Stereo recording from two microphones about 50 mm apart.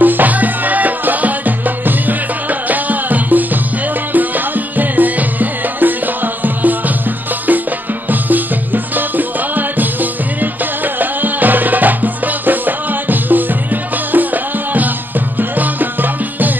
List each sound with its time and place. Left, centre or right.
0.0 s music: right
8.1 s music: right